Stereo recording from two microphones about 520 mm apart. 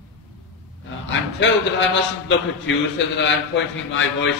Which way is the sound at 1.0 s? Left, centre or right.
Left.